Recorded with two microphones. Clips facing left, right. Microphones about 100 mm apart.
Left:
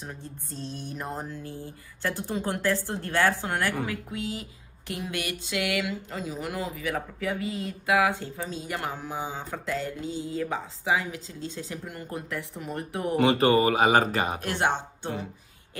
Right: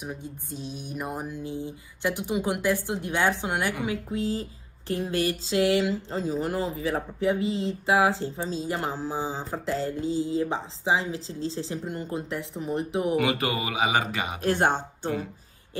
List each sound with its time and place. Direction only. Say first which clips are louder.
0.0 s a sound: right 4 dB; 15° right (ahead or behind)
3.8 s speech: right 4 dB; 25° right (ahead or behind)
13.1 s speech: left 8 dB; 30° left (ahead or behind)
14.4 s speech: right 3 dB; 40° right (ahead or behind)